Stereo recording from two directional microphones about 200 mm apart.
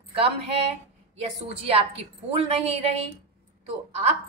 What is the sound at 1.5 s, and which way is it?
A woman's voice, 30° right (ahead or behind).